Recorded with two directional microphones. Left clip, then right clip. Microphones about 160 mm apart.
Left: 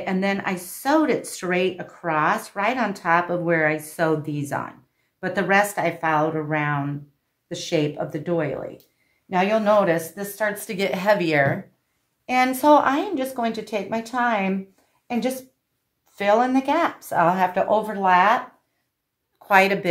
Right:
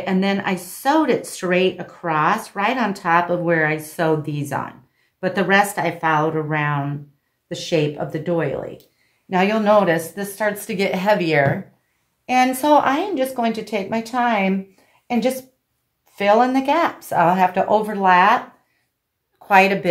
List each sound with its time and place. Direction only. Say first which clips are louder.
0.0 s a woman's voice: right 3 dB; 20° left (ahead or behind)